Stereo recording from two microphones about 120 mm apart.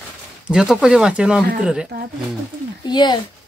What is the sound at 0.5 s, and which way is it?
Speech, 5° right (ahead or behind).